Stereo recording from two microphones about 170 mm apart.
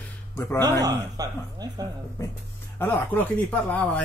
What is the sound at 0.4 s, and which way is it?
Speech, 15° left (ahead or behind).